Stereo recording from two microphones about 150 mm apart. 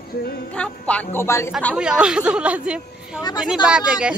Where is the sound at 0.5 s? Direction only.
10° left (ahead or behind).